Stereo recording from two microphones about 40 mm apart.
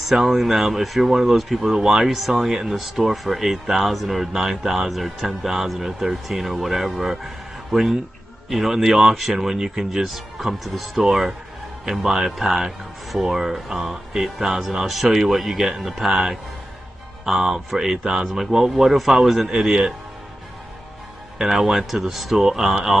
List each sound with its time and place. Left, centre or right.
0.0 s speech: centre
4.3 s speech: centre
15.8 s speech: centre
17.2 s speech: centre
19.6 s speech: centre
21.4 s speech: centre